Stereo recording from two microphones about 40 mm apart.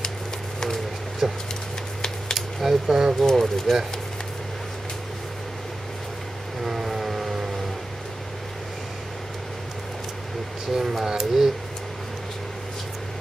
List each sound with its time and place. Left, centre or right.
1.2 s speech: centre
2.3 s a sound: centre
2.9 s speech: centre
3.3 s speech: centre
6.6 s vehicle: centre
10.7 s speech: centre